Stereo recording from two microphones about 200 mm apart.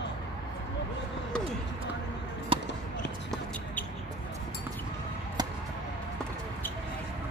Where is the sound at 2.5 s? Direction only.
25° right (ahead or behind).